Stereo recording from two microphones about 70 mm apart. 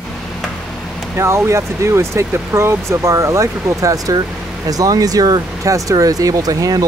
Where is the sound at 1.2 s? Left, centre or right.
Right.